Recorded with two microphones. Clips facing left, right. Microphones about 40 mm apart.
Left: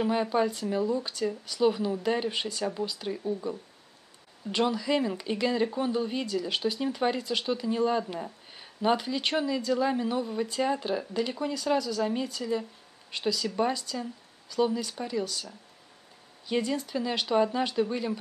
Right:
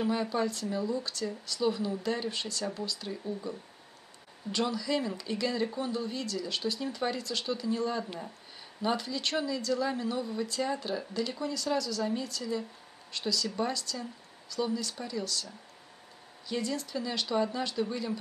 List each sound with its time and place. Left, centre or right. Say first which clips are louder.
0.0 s speech: left 4 dB; left
16.4 s speech: left 5 dB; centre